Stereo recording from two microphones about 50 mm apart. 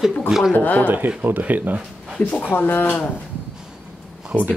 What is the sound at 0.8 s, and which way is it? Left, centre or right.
Speech, right.